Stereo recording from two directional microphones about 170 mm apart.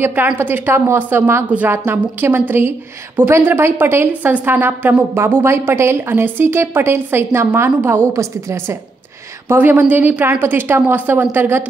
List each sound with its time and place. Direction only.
0.0 s a woman's voice: 10° right (ahead or behind)